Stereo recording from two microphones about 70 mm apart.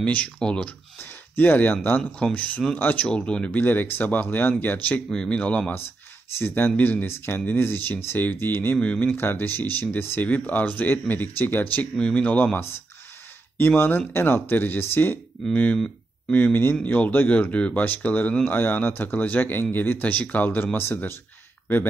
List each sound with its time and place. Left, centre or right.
0.0 s speech: centre
0.9 s speech: left
2.1 s speech: centre
5.1 s speech: centre
6.3 s speech: left
8.7 s speech: centre
9.0 s speech: left
10.2 s speech: left
13.6 s speech: left
15.5 s speech: left
20.4 s speech: left